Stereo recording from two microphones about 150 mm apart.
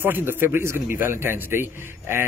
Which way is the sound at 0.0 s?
15° right (ahead or behind).